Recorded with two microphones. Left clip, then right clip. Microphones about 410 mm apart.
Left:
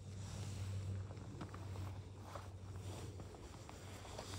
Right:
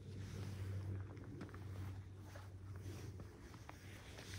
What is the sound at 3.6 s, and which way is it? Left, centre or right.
Vehicle, centre.